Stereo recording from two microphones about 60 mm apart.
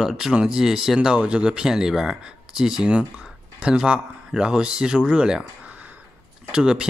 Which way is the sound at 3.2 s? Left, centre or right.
Centre.